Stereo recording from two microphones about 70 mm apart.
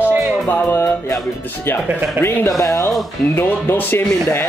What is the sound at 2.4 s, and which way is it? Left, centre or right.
Speech, left.